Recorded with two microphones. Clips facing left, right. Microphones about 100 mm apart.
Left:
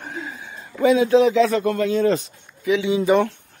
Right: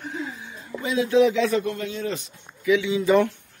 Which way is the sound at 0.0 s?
50° left (ahead or behind).